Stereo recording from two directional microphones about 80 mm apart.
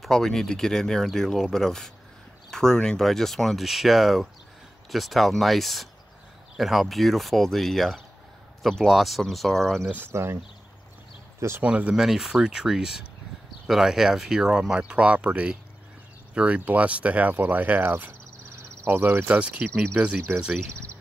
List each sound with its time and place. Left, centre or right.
0.0 s speech: centre
10.1 s speech: right
11.6 s speech: centre